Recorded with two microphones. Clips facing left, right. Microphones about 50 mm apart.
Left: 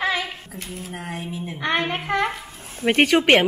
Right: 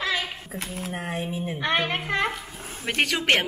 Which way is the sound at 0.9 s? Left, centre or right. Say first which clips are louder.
Right 1 dB; centre.